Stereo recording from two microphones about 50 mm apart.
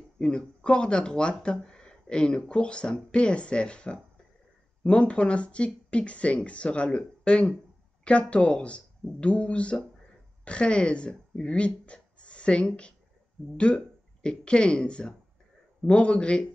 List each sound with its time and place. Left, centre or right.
0.2 s speech: centre